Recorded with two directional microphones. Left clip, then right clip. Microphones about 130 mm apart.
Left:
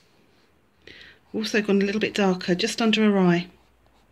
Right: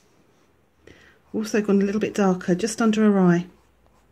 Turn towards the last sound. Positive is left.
turn(degrees=-50)  # may be behind; listen again after turning